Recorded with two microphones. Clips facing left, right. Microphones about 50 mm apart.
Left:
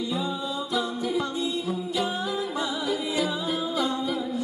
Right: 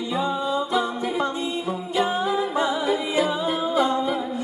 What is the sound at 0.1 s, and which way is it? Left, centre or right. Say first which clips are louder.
A capella: right 5 dB; right.